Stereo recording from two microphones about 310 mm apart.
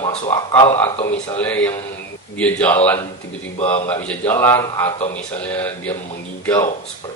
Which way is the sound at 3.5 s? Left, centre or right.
Centre.